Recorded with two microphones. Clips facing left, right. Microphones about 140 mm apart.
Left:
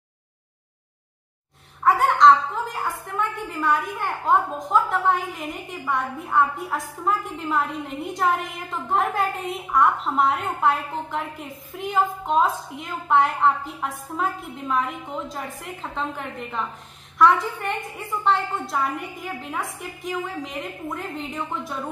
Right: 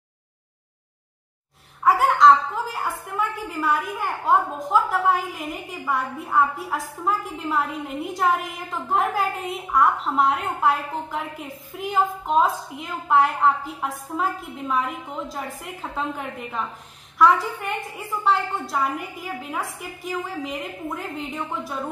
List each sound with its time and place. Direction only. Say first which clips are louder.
1.8 s a woman's voice: even; centre (ahead or behind)